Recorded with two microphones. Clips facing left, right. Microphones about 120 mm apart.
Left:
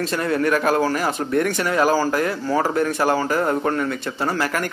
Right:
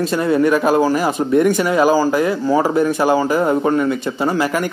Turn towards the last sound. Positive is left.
turn(degrees=-10)  # may be behind; listen again after turning